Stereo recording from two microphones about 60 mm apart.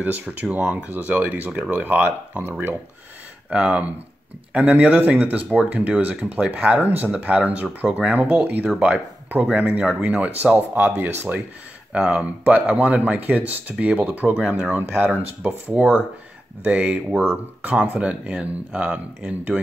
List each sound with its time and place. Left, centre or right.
0.0 s speech: right
0.6 s speech: centre
0.8 s speech: right
3.4 s speech: centre
11.9 s speech: centre; by 15.0 s right
15.0 s speech: right
18.0 s speech: centre